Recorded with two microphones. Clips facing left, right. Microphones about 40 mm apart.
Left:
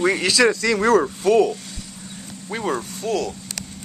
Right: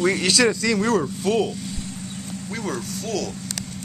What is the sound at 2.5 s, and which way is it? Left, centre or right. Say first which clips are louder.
Speech: left 5 dB; left.